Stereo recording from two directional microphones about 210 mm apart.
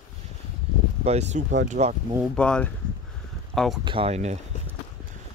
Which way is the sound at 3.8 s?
25° right (ahead or behind).